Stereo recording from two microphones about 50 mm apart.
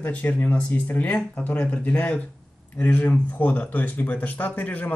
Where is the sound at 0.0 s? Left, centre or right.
Left.